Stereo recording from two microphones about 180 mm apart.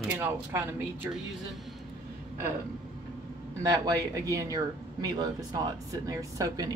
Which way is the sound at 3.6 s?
20° right (ahead or behind).